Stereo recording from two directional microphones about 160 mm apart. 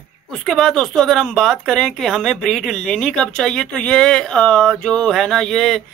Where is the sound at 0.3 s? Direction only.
Centre (ahead or behind).